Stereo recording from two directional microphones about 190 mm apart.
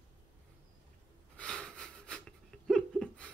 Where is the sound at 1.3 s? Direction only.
5° left (ahead or behind).